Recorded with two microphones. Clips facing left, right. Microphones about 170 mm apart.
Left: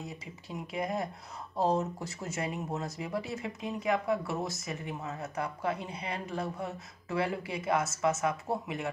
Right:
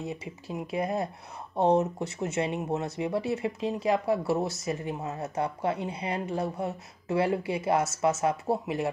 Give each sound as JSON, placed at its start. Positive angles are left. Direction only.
{"t": 0.0, "sound": "speech", "side_deg": -25}